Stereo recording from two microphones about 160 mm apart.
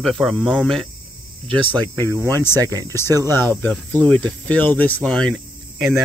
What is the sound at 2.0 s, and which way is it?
Speech, 20° right (ahead or behind).